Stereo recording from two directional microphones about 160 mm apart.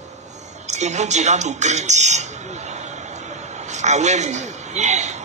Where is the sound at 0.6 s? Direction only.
45° right (ahead or behind).